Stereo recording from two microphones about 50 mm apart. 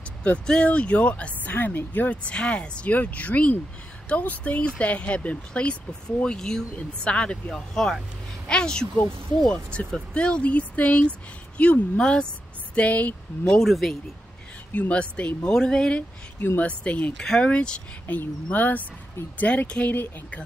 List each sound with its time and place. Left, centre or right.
0.2 s speech: left
2.2 s speech: left
7.4 s speech: centre; by 11.8 s left
12.0 s speech: centre
12.7 s speech: left
13.7 s speech: centre
14.7 s speech: left
15.5 s speech: centre
16.5 s speech: left
18.0 s speech: left
19.9 s speech: left